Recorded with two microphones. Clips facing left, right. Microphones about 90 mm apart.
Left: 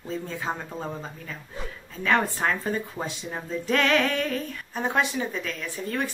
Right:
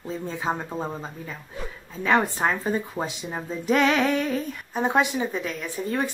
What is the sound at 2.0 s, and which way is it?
A woman's voice, 20° right (ahead or behind).